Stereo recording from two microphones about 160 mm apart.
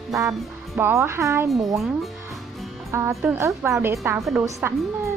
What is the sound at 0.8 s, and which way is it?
Speech, 15° right (ahead or behind).